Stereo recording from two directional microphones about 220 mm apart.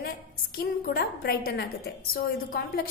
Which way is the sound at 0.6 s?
45° left (ahead or behind).